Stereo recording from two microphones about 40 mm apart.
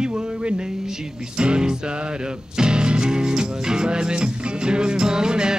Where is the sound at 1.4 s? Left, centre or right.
Right.